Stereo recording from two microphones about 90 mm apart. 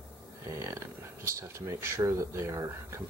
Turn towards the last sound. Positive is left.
turn(degrees=-35)  # may be behind; listen again after turning